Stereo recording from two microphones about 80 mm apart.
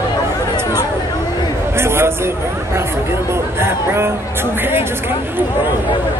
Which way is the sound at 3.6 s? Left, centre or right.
Right.